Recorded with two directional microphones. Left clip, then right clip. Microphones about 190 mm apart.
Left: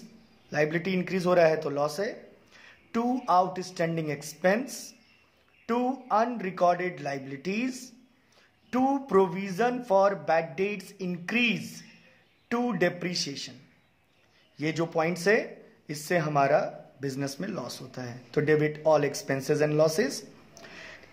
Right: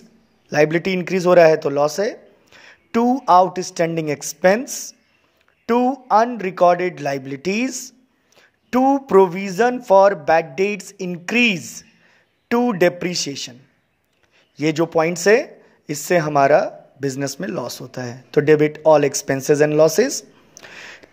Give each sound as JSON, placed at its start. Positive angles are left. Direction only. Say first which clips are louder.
{"t": 0.5, "sound": "speech", "louder": "right 11 dB", "side_deg": -40}
{"t": 14.6, "sound": "speech", "louder": "right 10 dB", "side_deg": -40}